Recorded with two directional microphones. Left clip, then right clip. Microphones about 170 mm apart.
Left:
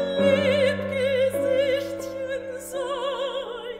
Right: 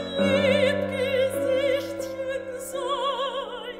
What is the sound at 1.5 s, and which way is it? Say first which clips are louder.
Music: left 1 dB; 55° right (ahead or behind).